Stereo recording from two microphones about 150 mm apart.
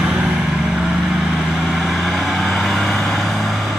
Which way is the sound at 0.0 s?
5° right (ahead or behind).